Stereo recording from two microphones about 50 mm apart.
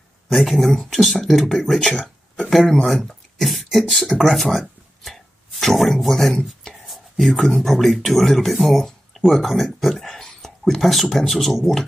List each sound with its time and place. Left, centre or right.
0.3 s speech: centre
2.6 s speech: centre
2.9 s beatboxing: centre
6.0 s speech: centre